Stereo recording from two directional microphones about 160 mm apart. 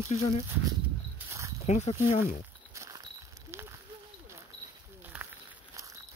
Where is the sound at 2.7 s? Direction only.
20° right (ahead or behind).